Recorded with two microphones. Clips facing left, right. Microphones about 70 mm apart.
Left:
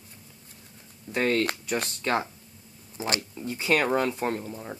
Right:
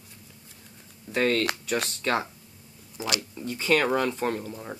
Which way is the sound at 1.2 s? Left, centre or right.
Centre.